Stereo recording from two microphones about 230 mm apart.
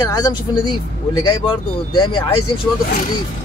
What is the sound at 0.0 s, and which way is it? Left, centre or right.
Speech, centre.